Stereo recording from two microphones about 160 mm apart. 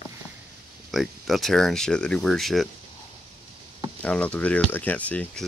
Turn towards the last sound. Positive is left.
turn(degrees=10)  # may be behind; listen again after turning